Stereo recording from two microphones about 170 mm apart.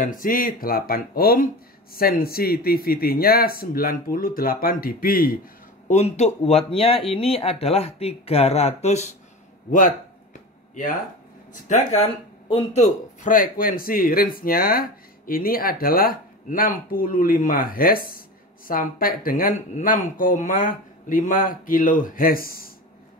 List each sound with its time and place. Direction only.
0.2 s speech: 55° left (ahead or behind)
5.9 s speech: 40° left (ahead or behind)
9.7 s speech: 55° left (ahead or behind)
11.7 s speech: 35° left (ahead or behind); by 22.7 s 60° left (ahead or behind)